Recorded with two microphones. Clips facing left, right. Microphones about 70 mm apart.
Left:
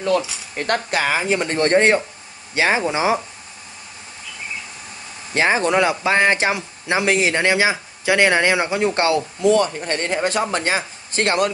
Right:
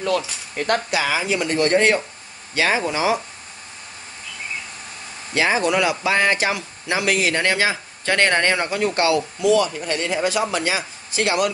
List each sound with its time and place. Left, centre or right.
0.7 s speech: left
5.3 s speech: left
9.0 s speech: left